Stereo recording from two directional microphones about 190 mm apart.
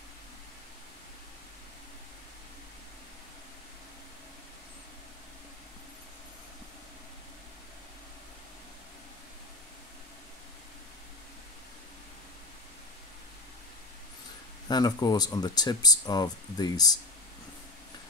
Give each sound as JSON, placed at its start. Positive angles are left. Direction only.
{"t": 14.7, "sound": "speech", "side_deg": 20}